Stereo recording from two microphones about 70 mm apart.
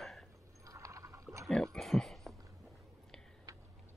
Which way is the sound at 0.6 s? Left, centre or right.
Right.